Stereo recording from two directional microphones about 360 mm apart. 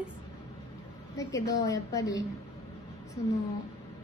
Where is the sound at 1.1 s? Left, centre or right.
Centre.